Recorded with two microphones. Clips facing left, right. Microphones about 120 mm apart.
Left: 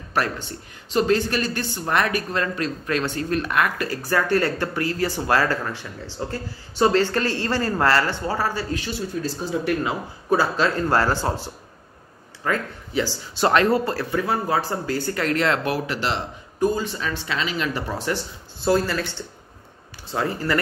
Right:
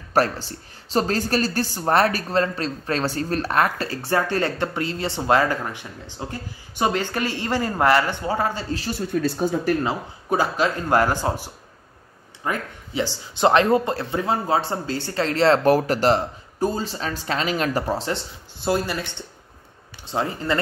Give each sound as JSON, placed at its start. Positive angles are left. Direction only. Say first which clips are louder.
{"t": 0.1, "sound": "a woman's voice", "louder": "right 4 dB", "side_deg": -35}
{"t": 8.7, "sound": "a woman's voice", "louder": "right 1 dB", "side_deg": -40}
{"t": 9.1, "sound": "speech", "louder": "right 6 dB", "side_deg": -60}
{"t": 10.3, "sound": "speech", "louder": "left 1 dB", "side_deg": -15}
{"t": 20.1, "sound": "speech", "louder": "even", "side_deg": -20}